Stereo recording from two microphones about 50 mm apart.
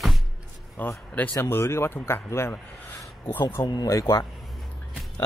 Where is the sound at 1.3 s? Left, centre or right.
Left.